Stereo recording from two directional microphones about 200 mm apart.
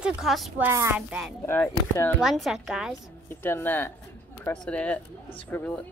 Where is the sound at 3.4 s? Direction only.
10° left (ahead or behind).